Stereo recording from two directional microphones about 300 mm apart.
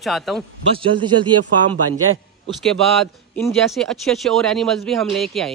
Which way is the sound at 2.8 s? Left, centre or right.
Centre.